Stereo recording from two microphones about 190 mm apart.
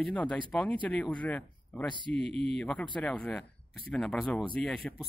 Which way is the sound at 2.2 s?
30° right (ahead or behind).